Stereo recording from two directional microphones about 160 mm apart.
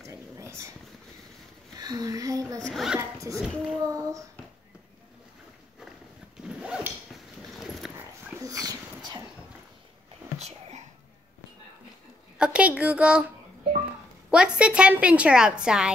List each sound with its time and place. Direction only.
0.0 s a sound: 20° right (ahead or behind)
1.8 s speech: 25° right (ahead or behind)
2.6 s speech: centre (ahead or behind)
3.0 s zipper: 20° right (ahead or behind)
3.3 s speech: centre (ahead or behind)
3.8 s speech: 20° right (ahead or behind)
6.4 s a sound: 5° right (ahead or behind)
8.3 s dog: 20° right (ahead or behind)
12.4 s a sound: 5° right (ahead or behind)
14.3 s a woman's voice: 5° right (ahead or behind)